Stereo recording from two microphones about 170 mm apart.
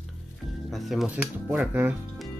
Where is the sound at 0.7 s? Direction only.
Centre (ahead or behind).